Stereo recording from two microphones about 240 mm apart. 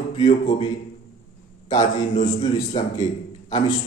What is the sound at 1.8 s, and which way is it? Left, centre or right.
A man's voice, left.